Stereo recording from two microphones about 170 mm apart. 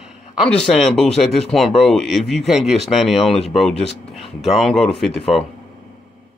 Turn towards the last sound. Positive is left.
turn(degrees=0)  # may be behind; listen again after turning